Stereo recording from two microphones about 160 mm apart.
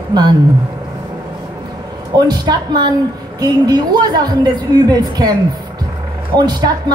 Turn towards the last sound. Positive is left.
turn(degrees=-25)  # may be behind; listen again after turning